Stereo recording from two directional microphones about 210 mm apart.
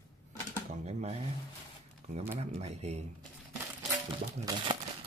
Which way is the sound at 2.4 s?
30° right (ahead or behind).